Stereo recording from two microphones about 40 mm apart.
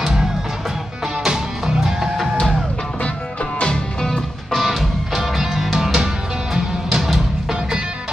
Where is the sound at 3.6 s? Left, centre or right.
Centre.